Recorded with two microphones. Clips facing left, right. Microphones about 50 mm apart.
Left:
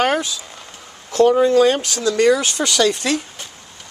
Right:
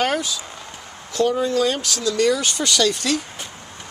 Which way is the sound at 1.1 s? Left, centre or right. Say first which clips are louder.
Left 7 dB; left.